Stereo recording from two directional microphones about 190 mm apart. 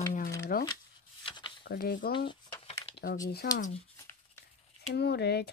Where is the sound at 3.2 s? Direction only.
55° left (ahead or behind).